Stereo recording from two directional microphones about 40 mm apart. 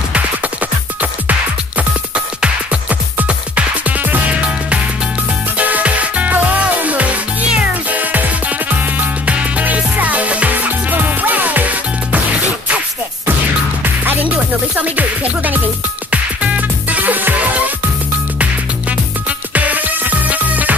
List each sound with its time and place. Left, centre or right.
0.1 s music: right
1.8 s music: right
5.6 s music: right
10.9 s music: right
14.8 s music: right
19.5 s music: right